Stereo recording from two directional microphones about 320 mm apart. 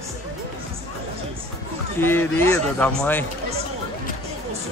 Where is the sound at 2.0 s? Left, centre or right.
Centre.